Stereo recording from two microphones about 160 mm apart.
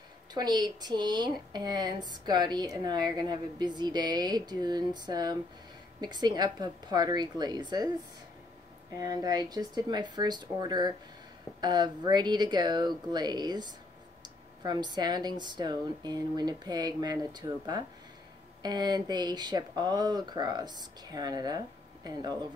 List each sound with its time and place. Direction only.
0.3 s speech: 25° right (ahead or behind)
8.9 s speech: 25° right (ahead or behind)